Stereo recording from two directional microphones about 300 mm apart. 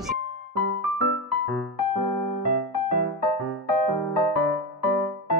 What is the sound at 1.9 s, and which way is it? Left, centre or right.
Electric piano, right.